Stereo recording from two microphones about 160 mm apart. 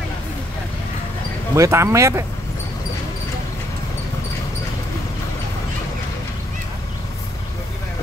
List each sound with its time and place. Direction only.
1.5 s speech: 15° right (ahead or behind)